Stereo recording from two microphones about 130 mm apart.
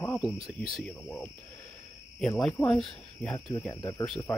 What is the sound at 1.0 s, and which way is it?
Speech, 15° left (ahead or behind).